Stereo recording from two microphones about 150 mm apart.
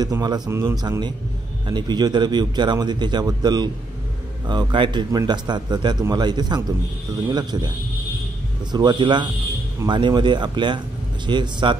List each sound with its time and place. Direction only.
0.0 s a man's voice: 25° right (ahead or behind)
8.7 s speech: 30° right (ahead or behind)